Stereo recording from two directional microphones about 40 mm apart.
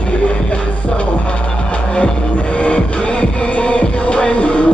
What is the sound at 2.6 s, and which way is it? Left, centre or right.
Music, left.